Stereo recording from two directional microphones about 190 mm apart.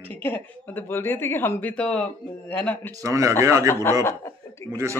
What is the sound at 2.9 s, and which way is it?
Speech, 15° right (ahead or behind).